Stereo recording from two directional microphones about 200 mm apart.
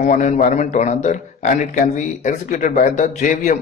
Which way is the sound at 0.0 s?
40° left (ahead or behind).